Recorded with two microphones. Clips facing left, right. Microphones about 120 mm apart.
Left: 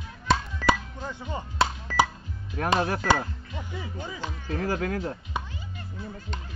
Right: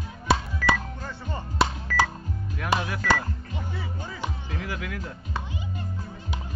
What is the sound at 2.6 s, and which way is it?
Speech, 40° left (ahead or behind).